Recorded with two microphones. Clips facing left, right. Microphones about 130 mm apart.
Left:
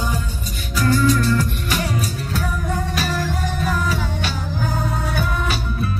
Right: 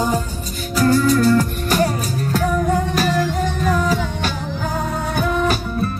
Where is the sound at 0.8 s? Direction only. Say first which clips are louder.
Right 3 dB; 40° right (ahead or behind).